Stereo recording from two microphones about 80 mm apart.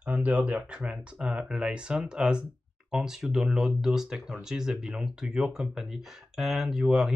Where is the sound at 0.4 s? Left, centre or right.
Centre.